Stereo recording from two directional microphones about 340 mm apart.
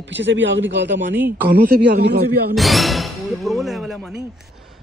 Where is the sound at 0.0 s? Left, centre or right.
Right.